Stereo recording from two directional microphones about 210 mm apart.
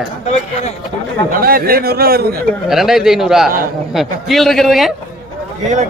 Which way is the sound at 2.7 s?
Centre (ahead or behind).